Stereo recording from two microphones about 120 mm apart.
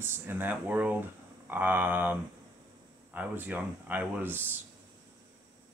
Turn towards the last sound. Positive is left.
turn(degrees=-15)  # may be behind; listen again after turning